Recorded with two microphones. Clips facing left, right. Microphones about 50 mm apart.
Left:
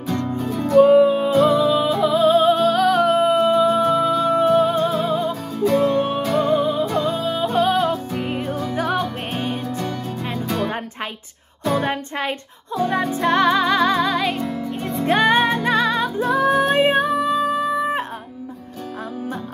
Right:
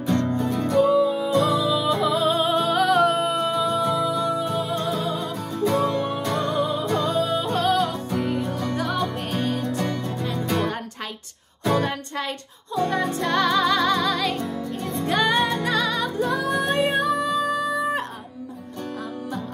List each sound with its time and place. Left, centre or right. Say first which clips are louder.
0.1 s music: right 1 dB; centre
0.5 s music: left 1 dB; centre
0.7 s music: left 7 dB; left
1.4 s music: left 5 dB; left
1.9 s music: left 5 dB; centre
4.4 s music: left 9 dB; left
4.9 s music: left 5 dB; centre
5.9 s music: left 5 dB; left
6.2 s music: left 5 dB; centre
9.8 s music: even; centre
11.9 s music: left 5 dB; left
12.7 s music: left 2 dB; centre; by 16.4 s left
16.4 s music: left 6 dB; centre
16.7 s music: left 4 dB; left